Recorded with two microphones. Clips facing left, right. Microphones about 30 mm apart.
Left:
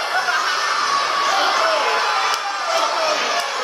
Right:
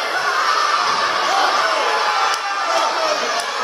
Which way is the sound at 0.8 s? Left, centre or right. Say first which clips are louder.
Right 1 dB; right.